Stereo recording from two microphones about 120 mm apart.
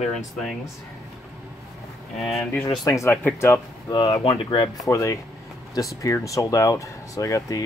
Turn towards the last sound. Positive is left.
turn(degrees=25)  # may be behind; listen again after turning